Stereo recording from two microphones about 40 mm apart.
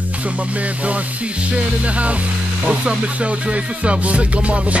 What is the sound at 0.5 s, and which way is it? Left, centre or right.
Music, right.